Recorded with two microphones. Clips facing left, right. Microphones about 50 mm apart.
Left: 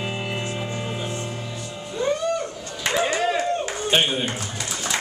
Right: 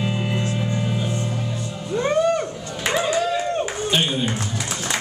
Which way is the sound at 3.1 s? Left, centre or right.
Left.